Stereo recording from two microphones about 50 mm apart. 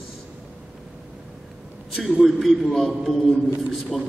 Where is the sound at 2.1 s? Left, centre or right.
Centre.